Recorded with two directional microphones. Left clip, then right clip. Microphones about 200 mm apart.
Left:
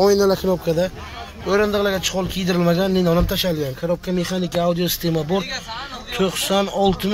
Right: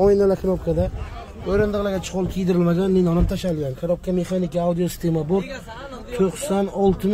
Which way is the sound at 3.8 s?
10° left (ahead or behind).